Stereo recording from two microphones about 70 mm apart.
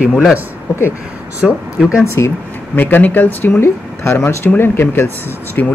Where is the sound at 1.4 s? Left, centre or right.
Centre.